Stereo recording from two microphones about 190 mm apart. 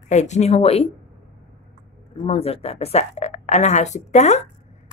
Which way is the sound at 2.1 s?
30° left (ahead or behind).